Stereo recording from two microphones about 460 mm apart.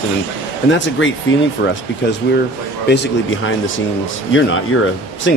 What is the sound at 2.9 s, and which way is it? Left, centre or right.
Speech, left.